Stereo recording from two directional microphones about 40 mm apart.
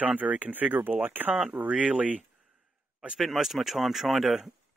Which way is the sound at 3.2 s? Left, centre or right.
Centre.